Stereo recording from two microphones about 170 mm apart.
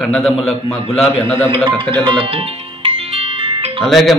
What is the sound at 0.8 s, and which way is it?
Speech, 35° left (ahead or behind).